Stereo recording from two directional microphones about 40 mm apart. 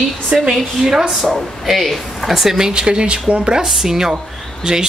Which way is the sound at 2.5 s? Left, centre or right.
Centre.